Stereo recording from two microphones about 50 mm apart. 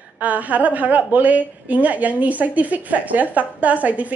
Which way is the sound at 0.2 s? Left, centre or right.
Right.